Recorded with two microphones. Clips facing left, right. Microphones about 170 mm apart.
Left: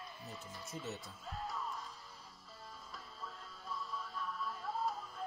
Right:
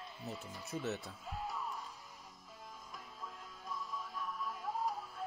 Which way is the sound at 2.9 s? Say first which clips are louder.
Even; 15° right (ahead or behind).